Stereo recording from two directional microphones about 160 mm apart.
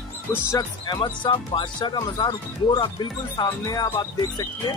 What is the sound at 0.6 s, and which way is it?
Speech, 25° left (ahead or behind).